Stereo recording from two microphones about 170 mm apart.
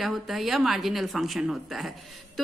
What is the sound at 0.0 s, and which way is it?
A woman's voice, centre (ahead or behind).